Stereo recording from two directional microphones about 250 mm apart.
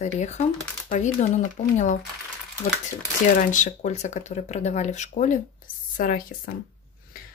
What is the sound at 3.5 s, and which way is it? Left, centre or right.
Speech, left.